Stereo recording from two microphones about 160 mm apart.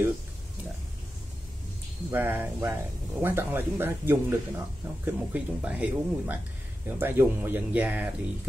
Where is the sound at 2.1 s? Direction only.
10° right (ahead or behind).